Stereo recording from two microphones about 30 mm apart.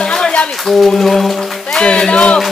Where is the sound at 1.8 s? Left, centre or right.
Left.